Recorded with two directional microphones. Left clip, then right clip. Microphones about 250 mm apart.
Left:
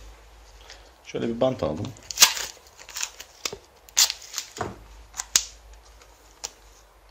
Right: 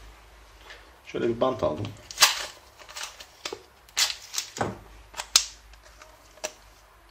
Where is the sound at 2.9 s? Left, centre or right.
Left.